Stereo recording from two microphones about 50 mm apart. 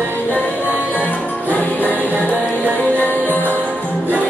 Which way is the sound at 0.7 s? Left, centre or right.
Left.